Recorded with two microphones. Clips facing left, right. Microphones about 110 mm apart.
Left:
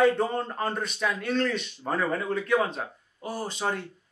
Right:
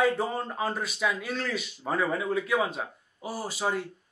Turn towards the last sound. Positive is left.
turn(degrees=-5)  # may be behind; listen again after turning